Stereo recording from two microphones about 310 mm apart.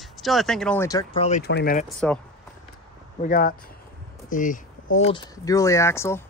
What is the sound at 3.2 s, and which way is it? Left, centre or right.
Speech, left.